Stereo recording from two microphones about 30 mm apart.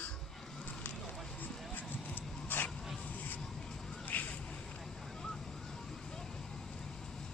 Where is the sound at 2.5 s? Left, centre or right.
Left.